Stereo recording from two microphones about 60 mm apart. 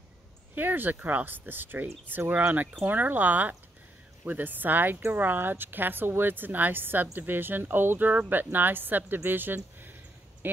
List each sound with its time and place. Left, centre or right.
0.6 s speech: right